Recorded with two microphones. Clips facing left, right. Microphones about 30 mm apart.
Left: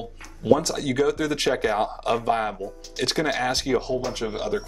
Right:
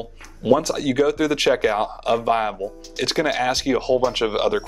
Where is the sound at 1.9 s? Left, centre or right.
Centre.